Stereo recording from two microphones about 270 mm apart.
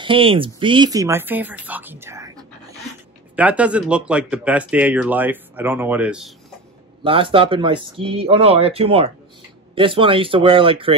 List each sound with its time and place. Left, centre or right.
0.0 s speech: centre
7.0 s speech: centre